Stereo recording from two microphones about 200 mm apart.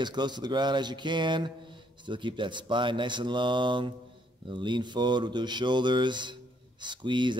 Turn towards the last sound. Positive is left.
turn(degrees=-25)  # may be behind; listen again after turning